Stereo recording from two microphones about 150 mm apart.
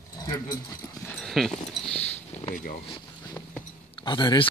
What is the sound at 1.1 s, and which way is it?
Dog, centre (ahead or behind).